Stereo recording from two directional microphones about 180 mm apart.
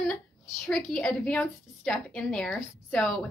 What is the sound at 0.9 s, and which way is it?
A woman's voice, 5° left (ahead or behind).